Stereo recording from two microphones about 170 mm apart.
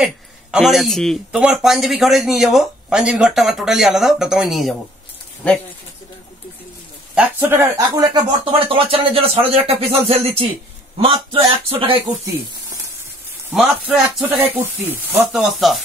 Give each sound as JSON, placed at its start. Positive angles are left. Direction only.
{"t": 0.0, "sound": "speech", "side_deg": -5}
{"t": 7.2, "sound": "speech", "side_deg": -10}
{"t": 8.5, "sound": "speech", "side_deg": -30}
{"t": 13.5, "sound": "speech", "side_deg": -5}